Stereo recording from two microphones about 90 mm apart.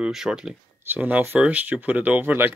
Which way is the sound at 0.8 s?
20° right (ahead or behind).